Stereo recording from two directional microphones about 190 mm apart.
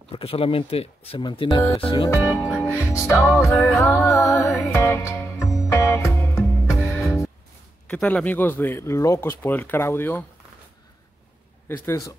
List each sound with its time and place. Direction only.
0.1 s speech: 30° left (ahead or behind)
2.1 s music: centre (ahead or behind)
2.4 s music: 15° left (ahead or behind)
3.3 s speech: 15° left (ahead or behind)
4.7 s music: 15° left (ahead or behind)
7.9 s speech: 5° left (ahead or behind)
11.7 s speech: 15° left (ahead or behind)